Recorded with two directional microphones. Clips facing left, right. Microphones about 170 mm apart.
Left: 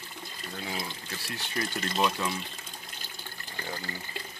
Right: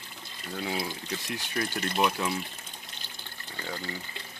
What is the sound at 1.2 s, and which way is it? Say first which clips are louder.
Speech: right 1 dB; 20° right (ahead or behind).